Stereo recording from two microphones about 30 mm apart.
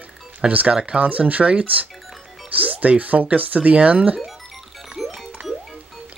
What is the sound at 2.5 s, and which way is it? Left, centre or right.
Speech, right.